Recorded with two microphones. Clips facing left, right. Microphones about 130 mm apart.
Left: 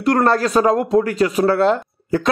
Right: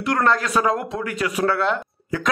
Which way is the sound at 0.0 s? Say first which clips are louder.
Left 5 dB; 40° left (ahead or behind).